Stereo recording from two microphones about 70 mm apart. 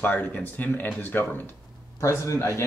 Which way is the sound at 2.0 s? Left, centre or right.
Left.